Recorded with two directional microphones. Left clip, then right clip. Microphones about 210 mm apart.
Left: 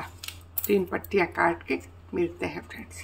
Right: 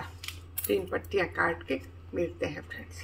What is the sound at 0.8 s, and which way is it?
Speech, 40° left (ahead or behind).